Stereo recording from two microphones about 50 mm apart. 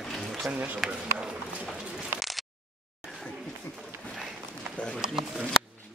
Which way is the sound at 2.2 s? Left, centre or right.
Centre.